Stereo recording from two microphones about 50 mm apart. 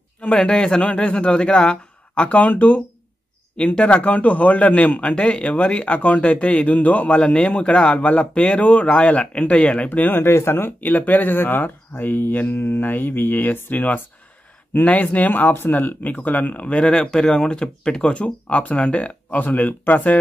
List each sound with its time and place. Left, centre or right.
0.2 s a man's voice: centre
7.2 s a man's voice: left
9.8 s speech: left
10.2 s speech: left
16.8 s speech: centre; by 20.2 s left